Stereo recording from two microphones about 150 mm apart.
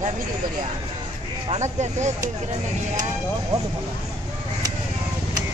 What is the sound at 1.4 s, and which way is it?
Speech, 45° right (ahead or behind).